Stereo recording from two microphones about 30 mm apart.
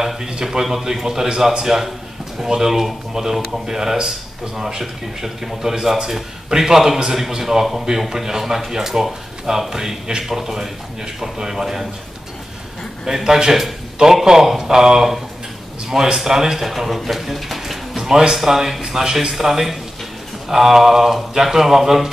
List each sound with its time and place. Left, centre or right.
0.2 s speech: right
0.5 s speech: centre
13.0 s speech: centre
16.6 s speech: centre
17.6 s a sound: centre
18.3 s speech: centre